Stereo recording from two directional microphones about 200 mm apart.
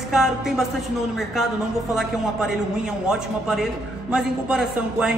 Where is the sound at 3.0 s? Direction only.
Centre (ahead or behind).